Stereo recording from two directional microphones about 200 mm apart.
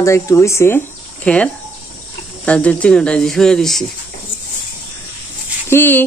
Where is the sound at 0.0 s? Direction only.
15° left (ahead or behind).